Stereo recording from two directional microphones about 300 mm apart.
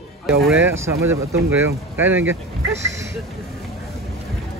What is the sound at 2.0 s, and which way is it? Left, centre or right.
Speech, right.